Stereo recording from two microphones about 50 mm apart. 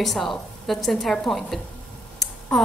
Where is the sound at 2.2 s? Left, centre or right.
Centre.